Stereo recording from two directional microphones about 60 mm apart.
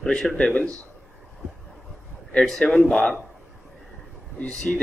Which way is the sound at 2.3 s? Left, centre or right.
Centre.